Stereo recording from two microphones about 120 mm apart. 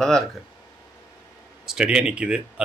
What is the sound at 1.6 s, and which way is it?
Speech, 5° right (ahead or behind).